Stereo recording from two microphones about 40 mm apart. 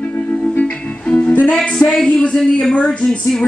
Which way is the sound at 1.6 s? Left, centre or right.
Centre.